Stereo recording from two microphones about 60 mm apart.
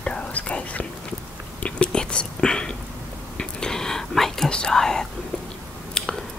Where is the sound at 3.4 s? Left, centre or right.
Centre.